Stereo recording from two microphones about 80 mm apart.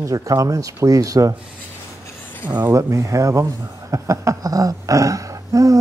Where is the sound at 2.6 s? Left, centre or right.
Right.